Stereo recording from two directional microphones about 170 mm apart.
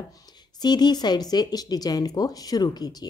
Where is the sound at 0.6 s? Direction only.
25° left (ahead or behind).